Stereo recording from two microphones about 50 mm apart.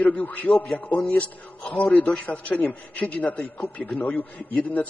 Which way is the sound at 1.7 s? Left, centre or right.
Left.